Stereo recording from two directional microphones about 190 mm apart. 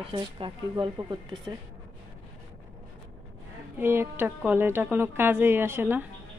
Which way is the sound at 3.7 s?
10° right (ahead or behind).